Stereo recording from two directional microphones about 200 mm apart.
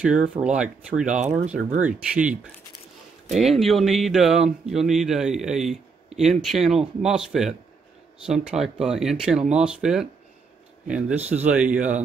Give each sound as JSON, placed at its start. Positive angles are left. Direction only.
{"t": 0.0, "sound": "speech", "side_deg": -5}